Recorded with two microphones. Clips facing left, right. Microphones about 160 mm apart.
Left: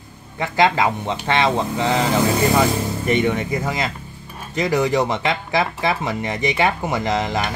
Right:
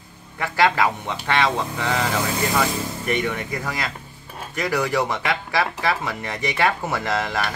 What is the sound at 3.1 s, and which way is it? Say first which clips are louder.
Speech: left 5 dB; 20° left (ahead or behind).